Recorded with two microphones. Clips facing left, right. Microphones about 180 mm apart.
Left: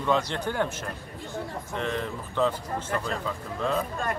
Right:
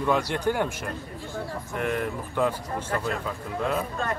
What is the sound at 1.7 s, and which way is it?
Speech, 10° right (ahead or behind).